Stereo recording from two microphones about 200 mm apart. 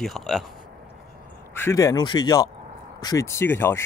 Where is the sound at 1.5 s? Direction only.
15° left (ahead or behind).